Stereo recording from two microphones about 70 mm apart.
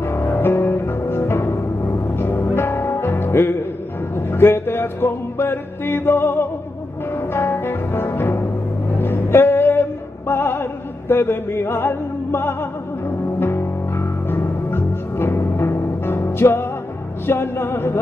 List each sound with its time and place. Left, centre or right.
0.0 s music: left